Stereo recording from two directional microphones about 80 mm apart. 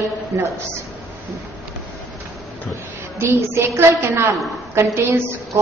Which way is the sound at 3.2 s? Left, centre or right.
Right.